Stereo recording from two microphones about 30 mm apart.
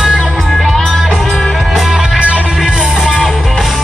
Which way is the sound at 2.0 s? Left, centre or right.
Right.